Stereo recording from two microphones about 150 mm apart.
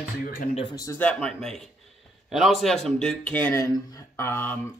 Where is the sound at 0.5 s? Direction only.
30° left (ahead or behind).